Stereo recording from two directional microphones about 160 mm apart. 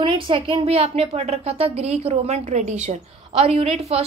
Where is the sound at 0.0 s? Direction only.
35° right (ahead or behind).